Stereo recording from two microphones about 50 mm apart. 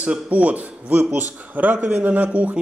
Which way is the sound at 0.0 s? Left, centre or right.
Right.